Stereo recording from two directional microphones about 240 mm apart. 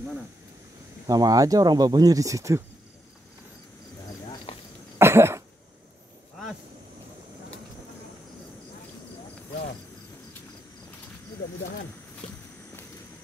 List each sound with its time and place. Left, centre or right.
1.0 s speech: centre
4.9 s cough: centre
12.2 s walk: left